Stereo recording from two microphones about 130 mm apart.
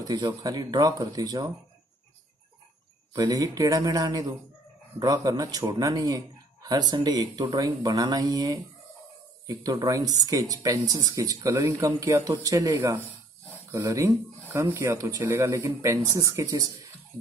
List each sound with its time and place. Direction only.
0.0 s a man's voice: 30° right (ahead or behind)
3.1 s a man's voice: 30° right (ahead or behind)